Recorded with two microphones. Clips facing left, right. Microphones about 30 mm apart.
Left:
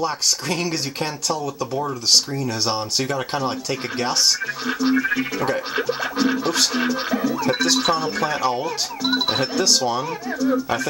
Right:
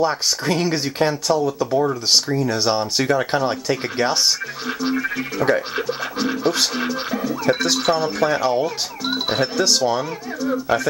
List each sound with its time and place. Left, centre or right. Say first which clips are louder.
0.0 s speech: right 3 dB; centre
0.9 s music: right 6 dB; centre
1.6 s speech: right 5 dB; centre
2.6 s music: right 3 dB; centre